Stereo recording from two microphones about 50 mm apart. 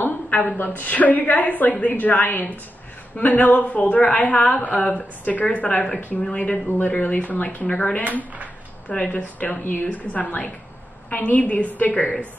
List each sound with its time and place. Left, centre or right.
0.0 s a sound: left
0.6 s a woman's voice: left
7.6 s a woman's voice: centre